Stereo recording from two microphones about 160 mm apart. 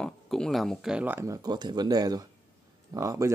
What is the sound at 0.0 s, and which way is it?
Speech, 5° left (ahead or behind).